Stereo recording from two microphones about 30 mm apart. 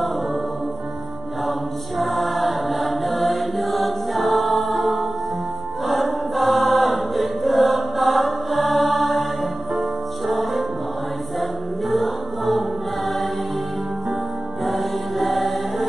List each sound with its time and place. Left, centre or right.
2.0 s choir: centre
9.8 s music: centre
11.9 s music: centre
14.6 s music: centre